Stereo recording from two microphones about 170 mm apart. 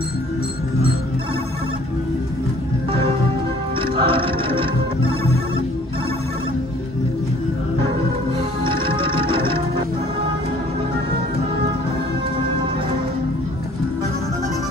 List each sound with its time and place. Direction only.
3.8 s music: 30° right (ahead or behind)
8.6 s music: 30° right (ahead or behind)